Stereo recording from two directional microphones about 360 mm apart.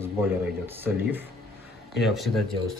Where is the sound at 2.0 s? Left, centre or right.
Centre.